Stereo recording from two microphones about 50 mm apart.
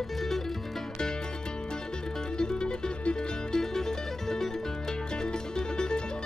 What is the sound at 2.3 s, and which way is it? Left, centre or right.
Music, centre.